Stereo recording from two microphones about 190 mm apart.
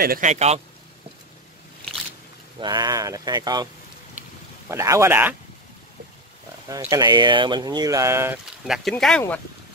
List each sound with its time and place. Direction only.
0.0 s a man's voice: 45° right (ahead or behind)
2.6 s speech: 20° right (ahead or behind)
4.6 s speech: 15° right (ahead or behind)
6.7 s speech: 20° right (ahead or behind)
8.6 s speech: centre (ahead or behind)